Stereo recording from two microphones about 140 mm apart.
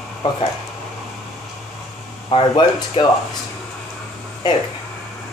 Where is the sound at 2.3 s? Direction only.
40° left (ahead or behind).